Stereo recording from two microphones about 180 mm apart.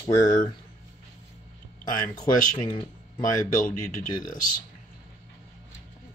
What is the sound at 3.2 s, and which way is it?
Speech, 45° left (ahead or behind).